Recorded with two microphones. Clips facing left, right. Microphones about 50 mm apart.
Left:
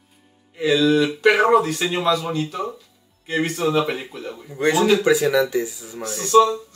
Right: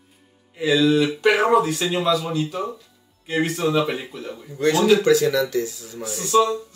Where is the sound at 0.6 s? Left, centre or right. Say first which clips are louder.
Left 1 dB; centre.